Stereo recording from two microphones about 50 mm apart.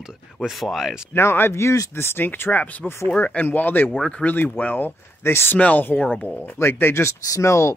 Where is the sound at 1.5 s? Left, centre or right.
Left.